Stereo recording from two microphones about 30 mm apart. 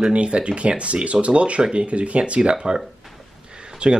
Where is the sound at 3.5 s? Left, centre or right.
Right.